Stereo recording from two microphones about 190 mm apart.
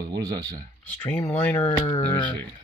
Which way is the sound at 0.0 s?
20° right (ahead or behind).